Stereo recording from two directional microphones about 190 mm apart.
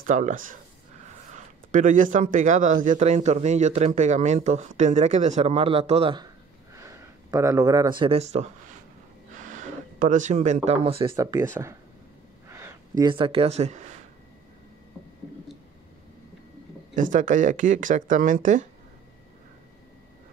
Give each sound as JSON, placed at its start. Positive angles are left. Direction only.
{"t": 0.0, "sound": "speech", "side_deg": -40}
{"t": 6.7, "sound": "speech", "side_deg": -15}
{"t": 16.9, "sound": "speech", "side_deg": -45}